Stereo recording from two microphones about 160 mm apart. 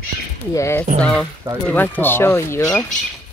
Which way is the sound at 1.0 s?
10° left (ahead or behind).